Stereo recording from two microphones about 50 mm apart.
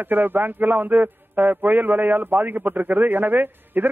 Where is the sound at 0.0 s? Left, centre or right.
Right.